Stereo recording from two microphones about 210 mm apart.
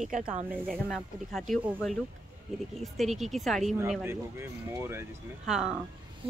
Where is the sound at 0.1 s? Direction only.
40° right (ahead or behind).